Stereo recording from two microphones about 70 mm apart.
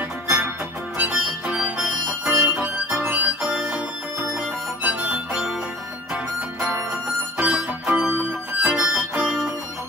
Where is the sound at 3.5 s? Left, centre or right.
Centre.